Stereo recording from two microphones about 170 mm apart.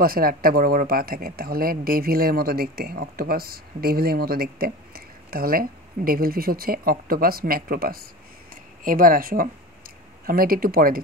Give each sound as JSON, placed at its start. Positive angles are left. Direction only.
{"t": 0.0, "sound": "speech", "side_deg": -60}